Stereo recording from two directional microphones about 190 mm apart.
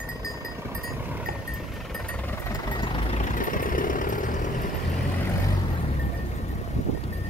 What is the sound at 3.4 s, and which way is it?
Vehicle, 45° left (ahead or behind).